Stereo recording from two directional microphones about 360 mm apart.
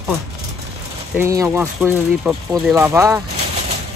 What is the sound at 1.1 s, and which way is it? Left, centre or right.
Speech, centre.